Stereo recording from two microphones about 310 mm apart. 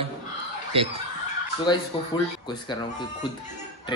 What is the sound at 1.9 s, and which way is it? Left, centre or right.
Speech, centre.